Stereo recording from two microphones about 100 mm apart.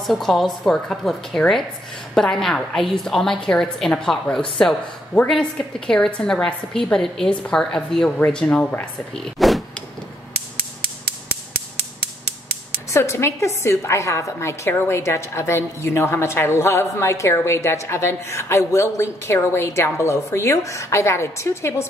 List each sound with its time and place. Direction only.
0.0 s a woman's voice: centre (ahead or behind)
9.1 s door: centre (ahead or behind)
12.9 s a woman's voice: 30° left (ahead or behind)